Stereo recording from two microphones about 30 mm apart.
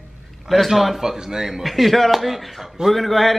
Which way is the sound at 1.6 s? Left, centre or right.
Centre.